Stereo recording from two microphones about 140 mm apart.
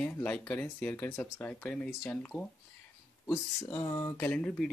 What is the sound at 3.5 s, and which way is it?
Speech, 20° left (ahead or behind).